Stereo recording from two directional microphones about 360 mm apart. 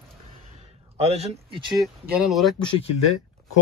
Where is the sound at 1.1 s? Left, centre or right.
Centre.